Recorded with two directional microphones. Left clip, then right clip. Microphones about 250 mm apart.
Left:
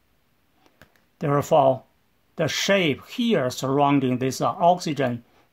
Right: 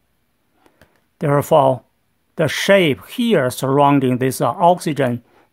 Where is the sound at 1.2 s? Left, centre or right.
Right.